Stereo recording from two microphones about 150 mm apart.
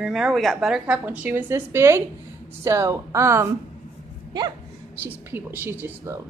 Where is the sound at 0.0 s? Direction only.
5° right (ahead or behind); by 3.4 s 20° right (ahead or behind).